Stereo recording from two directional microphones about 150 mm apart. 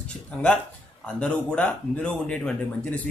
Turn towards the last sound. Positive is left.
turn(degrees=5)  # may be behind; listen again after turning